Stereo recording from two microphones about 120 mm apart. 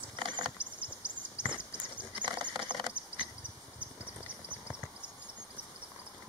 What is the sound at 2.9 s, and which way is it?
Insect, 10° right (ahead or behind).